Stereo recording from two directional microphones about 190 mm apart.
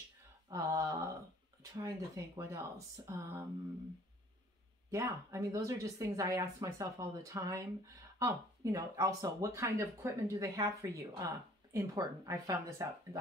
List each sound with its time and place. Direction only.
0.5 s speech: 15° right (ahead or behind)
4.9 s speech: 15° right (ahead or behind)